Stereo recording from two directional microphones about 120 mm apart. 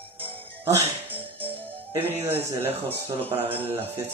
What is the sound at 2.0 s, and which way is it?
Speech, 15° right (ahead or behind).